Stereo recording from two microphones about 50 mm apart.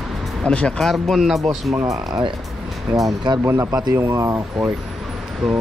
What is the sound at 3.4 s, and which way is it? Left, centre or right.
Speech, right.